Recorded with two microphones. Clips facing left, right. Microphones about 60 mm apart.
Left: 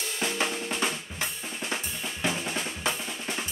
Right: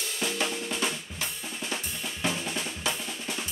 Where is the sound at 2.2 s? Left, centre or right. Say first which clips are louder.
Left 1 dB; centre.